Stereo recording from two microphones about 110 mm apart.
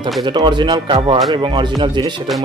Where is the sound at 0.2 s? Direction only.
45° right (ahead or behind).